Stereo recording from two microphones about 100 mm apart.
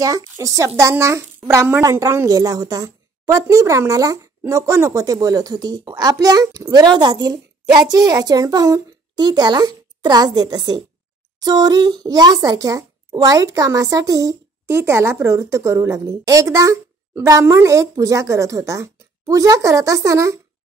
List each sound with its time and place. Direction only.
0.0 s a child's voice: 35° right (ahead or behind)